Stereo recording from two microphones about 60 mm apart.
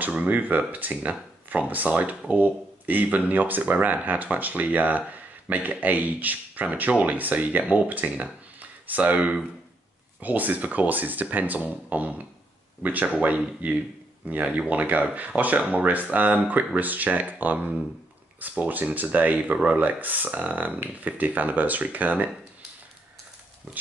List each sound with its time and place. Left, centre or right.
0.0 s speech: right